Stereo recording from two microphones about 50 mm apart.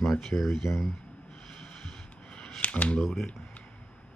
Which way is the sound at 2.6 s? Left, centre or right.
Left.